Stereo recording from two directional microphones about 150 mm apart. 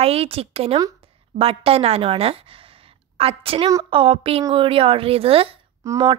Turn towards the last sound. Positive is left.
turn(degrees=-20)  # may be behind; listen again after turning